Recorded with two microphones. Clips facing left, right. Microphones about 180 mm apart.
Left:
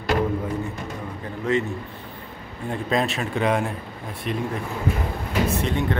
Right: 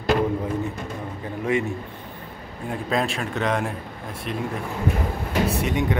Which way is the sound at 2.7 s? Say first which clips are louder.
Left 1 dB; centre (ahead or behind).